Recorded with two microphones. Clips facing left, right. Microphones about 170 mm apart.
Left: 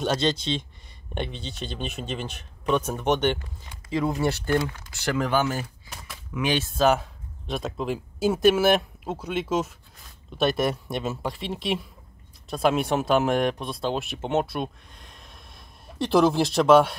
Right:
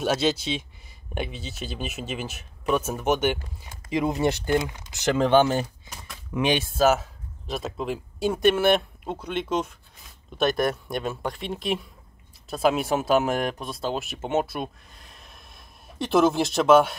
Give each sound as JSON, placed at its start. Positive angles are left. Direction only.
{"t": 0.0, "sound": "speech", "side_deg": -5}
{"t": 3.9, "sound": "speech", "side_deg": -20}
{"t": 6.4, "sound": "speech", "side_deg": -15}
{"t": 6.8, "sound": "speech", "side_deg": 0}